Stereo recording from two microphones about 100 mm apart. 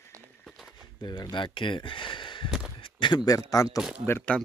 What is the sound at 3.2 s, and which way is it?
Speech, 35° left (ahead or behind).